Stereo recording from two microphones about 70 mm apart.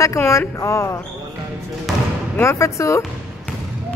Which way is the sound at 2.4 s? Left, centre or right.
Left.